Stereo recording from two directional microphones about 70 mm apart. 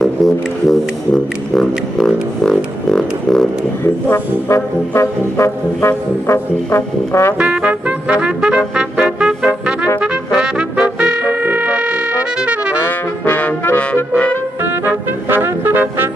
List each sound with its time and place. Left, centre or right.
0.2 s music: centre
3.8 s brass instrument: left
7.3 s brass instrument: centre
12.4 s music: centre
12.8 s brass instrument: left
15.2 s brass instrument: right